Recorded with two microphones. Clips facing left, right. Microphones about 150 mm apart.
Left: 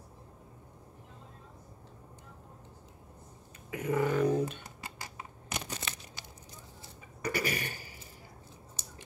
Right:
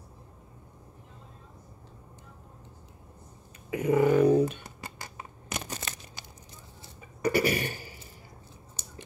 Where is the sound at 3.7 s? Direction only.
15° right (ahead or behind).